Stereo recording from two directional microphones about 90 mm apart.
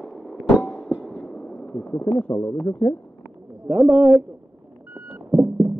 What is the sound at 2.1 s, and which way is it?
Speech, 20° left (ahead or behind).